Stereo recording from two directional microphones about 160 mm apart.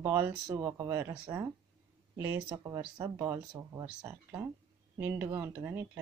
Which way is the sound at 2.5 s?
25° right (ahead or behind).